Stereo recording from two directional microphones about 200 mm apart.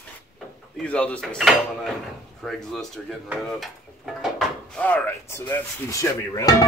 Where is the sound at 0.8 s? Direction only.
5° left (ahead or behind).